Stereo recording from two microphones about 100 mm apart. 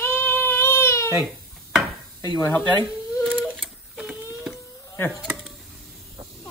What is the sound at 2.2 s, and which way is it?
Speech, 40° left (ahead or behind).